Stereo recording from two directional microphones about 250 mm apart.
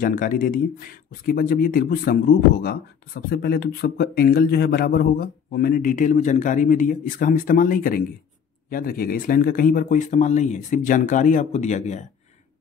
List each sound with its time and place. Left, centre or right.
0.0 s speech: left